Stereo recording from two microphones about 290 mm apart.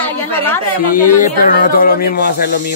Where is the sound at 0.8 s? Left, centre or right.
Left.